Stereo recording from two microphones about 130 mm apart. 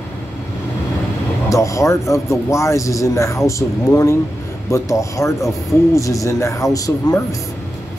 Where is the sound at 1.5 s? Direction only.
25° left (ahead or behind).